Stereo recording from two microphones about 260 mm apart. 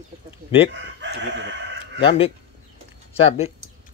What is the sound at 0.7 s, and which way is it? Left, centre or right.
Chicken, right.